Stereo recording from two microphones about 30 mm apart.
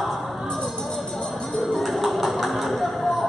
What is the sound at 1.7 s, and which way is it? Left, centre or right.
Tap, centre.